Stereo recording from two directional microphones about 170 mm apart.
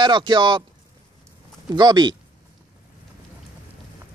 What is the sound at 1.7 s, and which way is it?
Speech, 25° right (ahead or behind).